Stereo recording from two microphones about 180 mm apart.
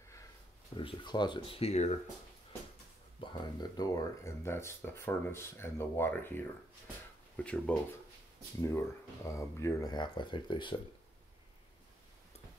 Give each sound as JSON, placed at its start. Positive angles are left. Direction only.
{"t": 0.7, "sound": "speech", "side_deg": 25}
{"t": 3.2, "sound": "speech", "side_deg": 25}